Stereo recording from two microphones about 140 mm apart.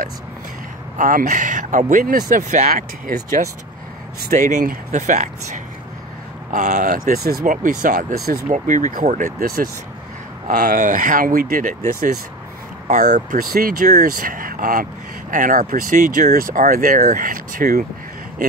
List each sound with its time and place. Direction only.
0.9 s speech: 70° right (ahead or behind)
12.8 s speech: 65° right (ahead or behind); by 14.9 s 90° right
15.3 s speech: 70° right (ahead or behind)